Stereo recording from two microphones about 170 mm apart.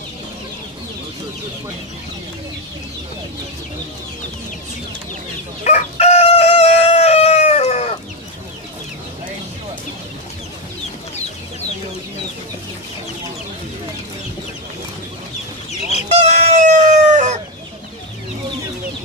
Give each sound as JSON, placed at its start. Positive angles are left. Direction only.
{"t": 5.6, "sound": "crowing", "side_deg": 40}
{"t": 16.1, "sound": "chicken", "side_deg": -40}